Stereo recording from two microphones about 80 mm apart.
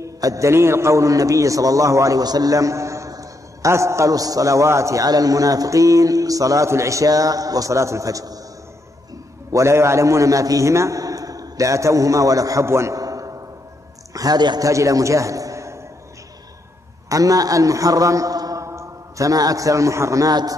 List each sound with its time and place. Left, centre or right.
0.0 s a man's voice: right
9.5 s a man's voice: right
14.6 s a man's voice: right
17.1 s a man's voice: right